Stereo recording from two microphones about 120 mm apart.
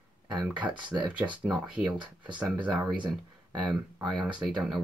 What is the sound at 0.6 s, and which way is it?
Speech, 40° right (ahead or behind).